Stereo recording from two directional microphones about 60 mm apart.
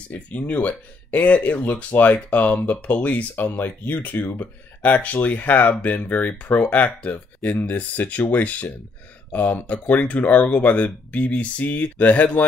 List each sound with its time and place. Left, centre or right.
0.1 s speech: left